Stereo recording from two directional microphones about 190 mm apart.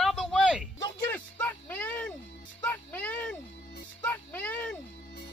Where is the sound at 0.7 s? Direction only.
20° left (ahead or behind).